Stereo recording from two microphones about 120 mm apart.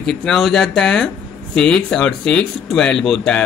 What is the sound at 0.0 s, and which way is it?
Speech, 5° left (ahead or behind).